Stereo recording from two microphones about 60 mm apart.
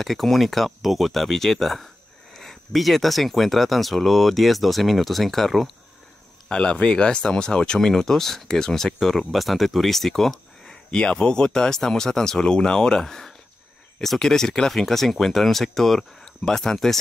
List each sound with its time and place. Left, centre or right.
0.0 s speech: centre
6.5 s speech: centre